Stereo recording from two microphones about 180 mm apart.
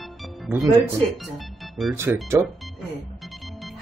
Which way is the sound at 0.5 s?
15° right (ahead or behind).